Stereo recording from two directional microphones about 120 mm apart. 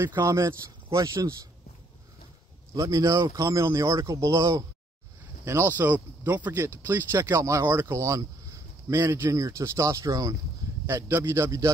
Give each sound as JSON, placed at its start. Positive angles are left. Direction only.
{"t": 0.2, "sound": "speech", "side_deg": -25}
{"t": 2.7, "sound": "speech", "side_deg": -30}